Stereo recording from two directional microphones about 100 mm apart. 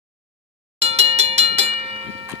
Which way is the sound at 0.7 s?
90° right.